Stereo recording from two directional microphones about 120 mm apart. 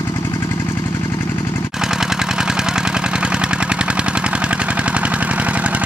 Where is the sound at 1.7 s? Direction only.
5° right (ahead or behind).